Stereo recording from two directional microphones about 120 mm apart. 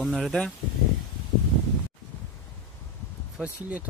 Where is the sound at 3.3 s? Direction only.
10° right (ahead or behind).